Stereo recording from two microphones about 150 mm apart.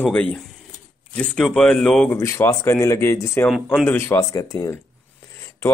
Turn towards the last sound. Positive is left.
turn(degrees=20)  # may be behind; listen again after turning